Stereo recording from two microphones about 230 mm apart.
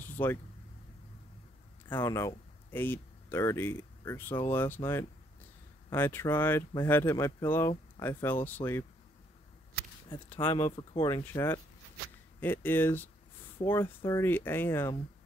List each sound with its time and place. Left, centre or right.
0.0 s vehicle: centre
1.9 s speech: centre
10.0 s speech: left